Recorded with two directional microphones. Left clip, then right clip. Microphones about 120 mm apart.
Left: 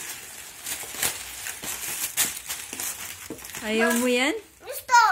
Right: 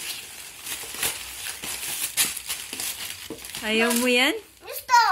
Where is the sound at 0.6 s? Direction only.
15° left (ahead or behind).